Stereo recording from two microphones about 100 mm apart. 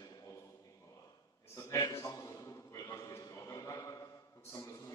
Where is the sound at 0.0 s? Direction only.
40° left (ahead or behind).